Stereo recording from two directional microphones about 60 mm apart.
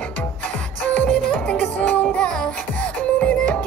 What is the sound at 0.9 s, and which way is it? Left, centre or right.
Music, left.